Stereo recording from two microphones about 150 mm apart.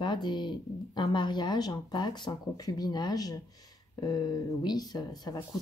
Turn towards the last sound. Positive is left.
turn(degrees=25)  # may be behind; listen again after turning